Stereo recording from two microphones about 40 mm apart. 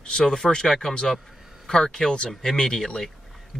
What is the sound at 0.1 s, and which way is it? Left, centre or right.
Speech, centre.